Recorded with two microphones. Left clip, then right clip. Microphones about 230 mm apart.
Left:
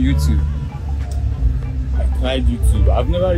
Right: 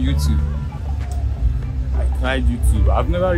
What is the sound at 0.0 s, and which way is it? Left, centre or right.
Music, right.